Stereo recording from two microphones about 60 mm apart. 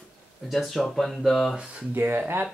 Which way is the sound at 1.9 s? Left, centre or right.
Right.